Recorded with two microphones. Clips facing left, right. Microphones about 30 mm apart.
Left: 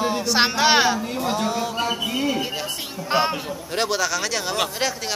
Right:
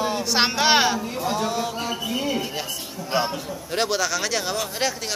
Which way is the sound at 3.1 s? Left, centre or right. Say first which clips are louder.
Left 3 dB; left.